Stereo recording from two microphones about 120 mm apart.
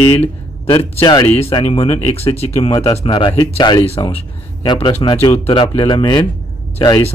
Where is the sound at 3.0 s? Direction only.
40° left (ahead or behind).